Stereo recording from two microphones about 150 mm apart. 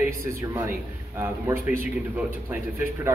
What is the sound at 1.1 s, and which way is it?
A man's voice, 15° right (ahead or behind).